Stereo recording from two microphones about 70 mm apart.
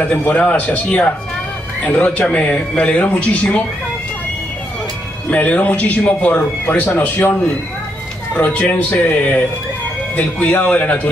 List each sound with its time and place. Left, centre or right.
0.0 s speech: left
5.3 s speech: left
8.4 s speech: left